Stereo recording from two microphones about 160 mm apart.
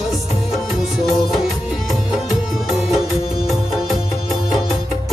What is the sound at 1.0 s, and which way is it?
Music, centre (ahead or behind).